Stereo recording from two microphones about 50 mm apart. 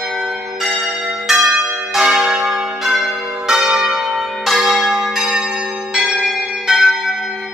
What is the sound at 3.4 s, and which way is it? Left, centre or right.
Church bell, centre.